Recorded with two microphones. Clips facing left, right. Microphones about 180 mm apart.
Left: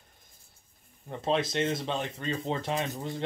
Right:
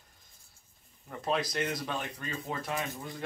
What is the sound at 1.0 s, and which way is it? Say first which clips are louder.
Speech: left 3 dB; 25° left (ahead or behind).